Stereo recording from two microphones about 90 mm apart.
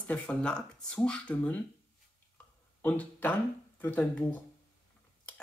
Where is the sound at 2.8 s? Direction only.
15° left (ahead or behind).